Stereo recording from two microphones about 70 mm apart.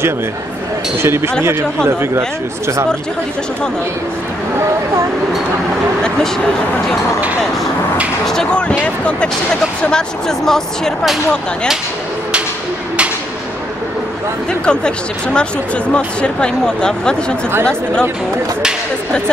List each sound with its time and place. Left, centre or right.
1.0 s speech: right
6.0 s speech: centre
8.3 s speech: centre
14.7 s speech: centre